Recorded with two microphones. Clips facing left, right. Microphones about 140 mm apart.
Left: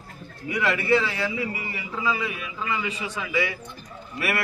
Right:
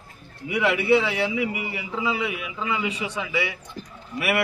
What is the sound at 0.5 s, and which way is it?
A man's voice, 10° right (ahead or behind).